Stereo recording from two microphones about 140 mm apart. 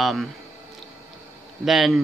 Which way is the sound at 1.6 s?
Centre (ahead or behind).